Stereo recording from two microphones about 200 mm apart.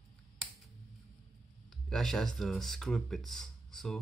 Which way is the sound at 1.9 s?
Centre (ahead or behind).